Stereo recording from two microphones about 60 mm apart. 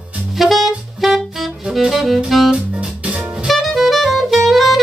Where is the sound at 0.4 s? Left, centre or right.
Centre.